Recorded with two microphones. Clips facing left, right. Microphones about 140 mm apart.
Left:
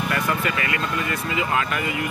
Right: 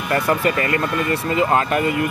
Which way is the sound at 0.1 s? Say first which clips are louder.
Right 10 dB; 40° right (ahead or behind).